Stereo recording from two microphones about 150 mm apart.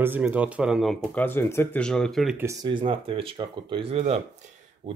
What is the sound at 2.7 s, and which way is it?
Speech, 35° right (ahead or behind).